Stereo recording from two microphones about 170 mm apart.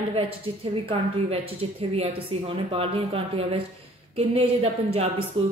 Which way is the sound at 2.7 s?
35° right (ahead or behind).